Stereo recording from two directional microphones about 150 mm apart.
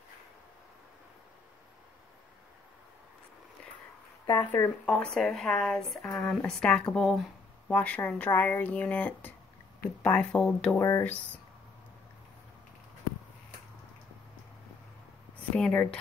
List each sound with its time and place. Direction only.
4.5 s speech: 10° left (ahead or behind)
10.8 s speech: 15° left (ahead or behind)
15.5 s speech: 10° left (ahead or behind)